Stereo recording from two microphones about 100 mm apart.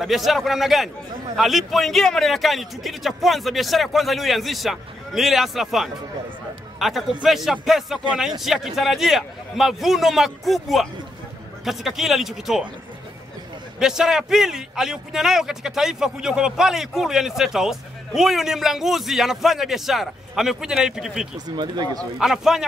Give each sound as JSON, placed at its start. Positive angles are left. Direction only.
{"t": 0.0, "sound": "a man's voice", "side_deg": 0}
{"t": 13.7, "sound": "a man's voice", "side_deg": -5}
{"t": 21.5, "sound": "speech", "side_deg": -45}
{"t": 22.2, "sound": "a man's voice", "side_deg": -5}